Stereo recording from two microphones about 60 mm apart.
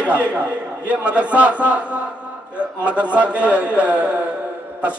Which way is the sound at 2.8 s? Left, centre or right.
Right.